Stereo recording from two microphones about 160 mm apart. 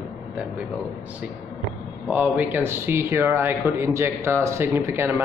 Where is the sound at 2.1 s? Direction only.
10° right (ahead or behind).